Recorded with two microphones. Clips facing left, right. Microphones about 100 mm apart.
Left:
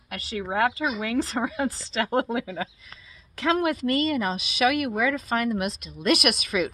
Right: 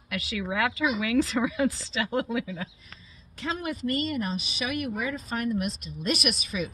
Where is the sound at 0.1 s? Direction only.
40° left (ahead or behind); by 2.9 s 65° left (ahead or behind).